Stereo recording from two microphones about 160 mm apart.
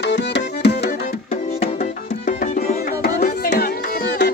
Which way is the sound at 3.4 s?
70° left (ahead or behind).